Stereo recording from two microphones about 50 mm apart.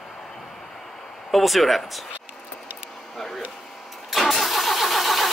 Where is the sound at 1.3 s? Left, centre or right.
Centre.